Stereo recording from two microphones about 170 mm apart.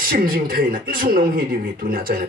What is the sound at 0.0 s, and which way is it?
Speech, 60° right (ahead or behind).